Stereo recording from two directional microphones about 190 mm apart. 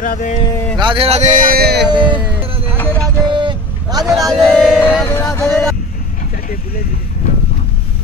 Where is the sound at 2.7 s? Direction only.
5° left (ahead or behind).